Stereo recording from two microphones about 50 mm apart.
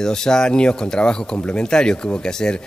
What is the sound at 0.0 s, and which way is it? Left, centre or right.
Speech, centre.